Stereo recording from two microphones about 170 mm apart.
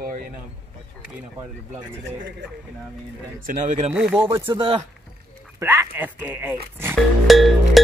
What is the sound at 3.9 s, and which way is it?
Speech, 10° right (ahead or behind).